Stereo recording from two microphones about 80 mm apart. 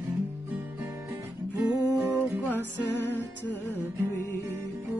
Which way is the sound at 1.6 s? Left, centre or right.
Right.